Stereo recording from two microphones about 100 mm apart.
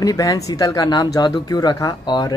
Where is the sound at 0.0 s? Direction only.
35° left (ahead or behind).